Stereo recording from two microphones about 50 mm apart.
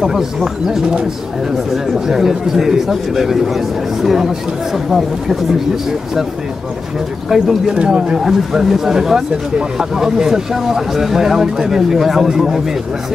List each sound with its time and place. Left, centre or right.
0.0 s speech: centre
7.2 s speech: centre
7.8 s speech: centre
8.2 s speech: centre